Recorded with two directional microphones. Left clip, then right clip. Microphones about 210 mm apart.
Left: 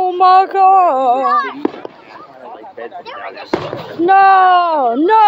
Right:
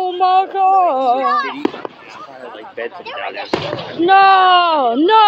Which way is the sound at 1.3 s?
50° left (ahead or behind).